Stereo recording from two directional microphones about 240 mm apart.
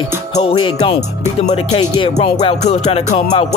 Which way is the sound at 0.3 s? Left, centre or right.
Left.